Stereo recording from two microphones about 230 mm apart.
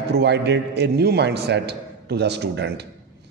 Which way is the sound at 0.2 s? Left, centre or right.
Right.